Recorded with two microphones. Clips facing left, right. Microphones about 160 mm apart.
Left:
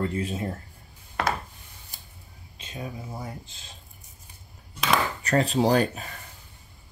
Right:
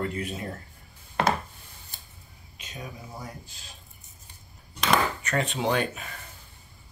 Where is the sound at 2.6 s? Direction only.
30° left (ahead or behind).